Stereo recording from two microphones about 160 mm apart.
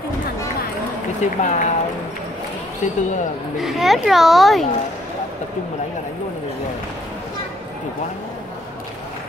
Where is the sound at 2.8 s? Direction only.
50° left (ahead or behind).